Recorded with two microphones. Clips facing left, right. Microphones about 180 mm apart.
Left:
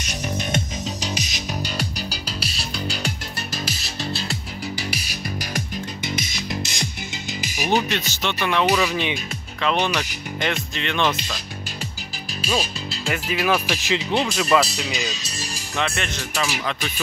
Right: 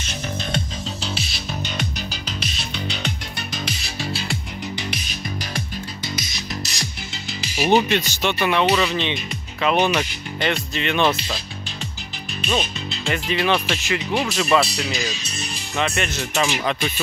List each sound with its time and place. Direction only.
1.0 s music: 15° left (ahead or behind)
7.7 s speech: 15° right (ahead or behind)
8.6 s speech: 5° left (ahead or behind)
9.6 s speech: 10° right (ahead or behind)
12.4 s speech: 5° left (ahead or behind)
14.3 s speech: centre (ahead or behind)
16.3 s speech: 15° right (ahead or behind)